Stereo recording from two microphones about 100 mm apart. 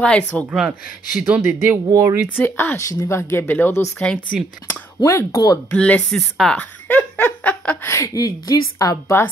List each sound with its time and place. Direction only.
0.0 s speech: 10° left (ahead or behind)
0.7 s speech: 15° right (ahead or behind)
1.9 s speech: 30° right (ahead or behind)
2.2 s speech: 20° left (ahead or behind)
5.0 s a woman's voice: 30° left (ahead or behind)
5.7 s speech: 15° left (ahead or behind)
7.9 s a woman's voice: 30° left (ahead or behind)